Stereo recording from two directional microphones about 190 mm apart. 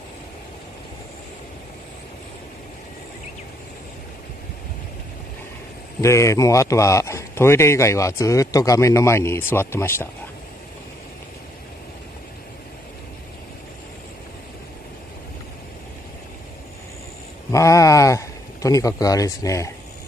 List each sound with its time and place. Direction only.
5.9 s a man's voice: 15° left (ahead or behind)
17.5 s speech: 15° left (ahead or behind)